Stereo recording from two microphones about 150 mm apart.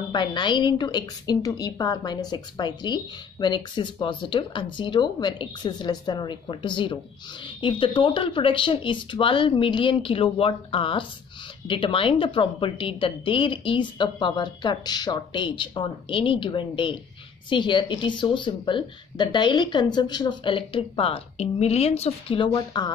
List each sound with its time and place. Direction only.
0.1 s a woman's voice: 30° left (ahead or behind)
22.4 s a woman's voice: 30° left (ahead or behind)